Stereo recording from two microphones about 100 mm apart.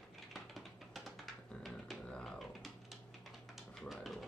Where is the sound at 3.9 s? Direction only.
Centre (ahead or behind).